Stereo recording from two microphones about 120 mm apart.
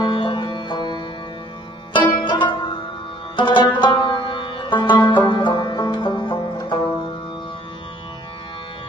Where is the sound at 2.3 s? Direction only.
40° left (ahead or behind).